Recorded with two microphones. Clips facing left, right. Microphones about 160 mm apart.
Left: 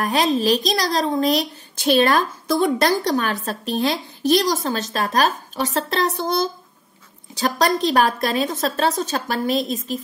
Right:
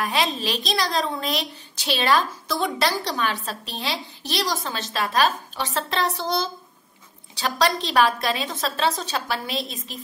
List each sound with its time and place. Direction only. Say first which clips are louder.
0.0 s a woman's voice: left 6 dB; 45° left (ahead or behind)